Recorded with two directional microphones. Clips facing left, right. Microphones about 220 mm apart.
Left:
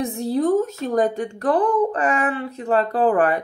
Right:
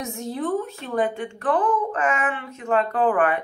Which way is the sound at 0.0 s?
35° left (ahead or behind).